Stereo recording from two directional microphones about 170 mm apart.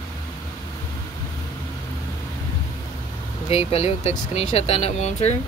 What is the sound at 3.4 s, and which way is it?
Speech, 35° left (ahead or behind).